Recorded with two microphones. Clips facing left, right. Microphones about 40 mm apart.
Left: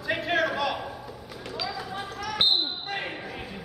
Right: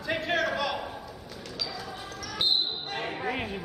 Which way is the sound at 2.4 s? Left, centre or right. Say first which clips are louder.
Left 3 dB; left.